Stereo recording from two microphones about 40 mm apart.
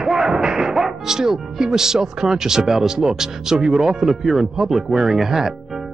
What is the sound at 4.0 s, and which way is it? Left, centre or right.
Speech, centre.